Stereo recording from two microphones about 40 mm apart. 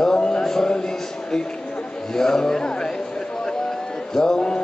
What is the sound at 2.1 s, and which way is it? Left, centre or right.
Speech, centre.